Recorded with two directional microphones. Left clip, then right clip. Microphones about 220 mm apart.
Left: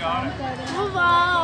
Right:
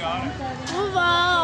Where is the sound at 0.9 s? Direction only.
40° right (ahead or behind).